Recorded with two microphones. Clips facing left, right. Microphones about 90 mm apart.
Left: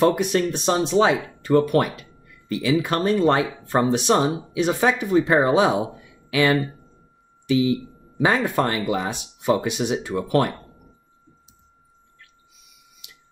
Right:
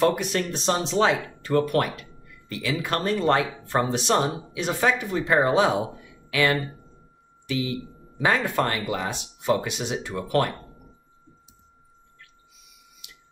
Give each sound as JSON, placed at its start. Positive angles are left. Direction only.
{"t": 0.0, "sound": "speech", "side_deg": 20}
{"t": 8.2, "sound": "speech", "side_deg": 20}